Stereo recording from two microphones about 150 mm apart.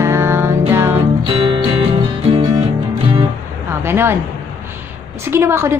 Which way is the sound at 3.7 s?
15° right (ahead or behind).